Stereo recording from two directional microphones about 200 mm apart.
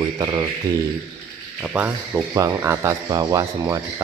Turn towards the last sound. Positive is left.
turn(degrees=-20)  # may be behind; listen again after turning